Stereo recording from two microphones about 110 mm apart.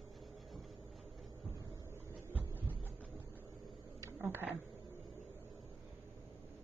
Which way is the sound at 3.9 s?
20° right (ahead or behind).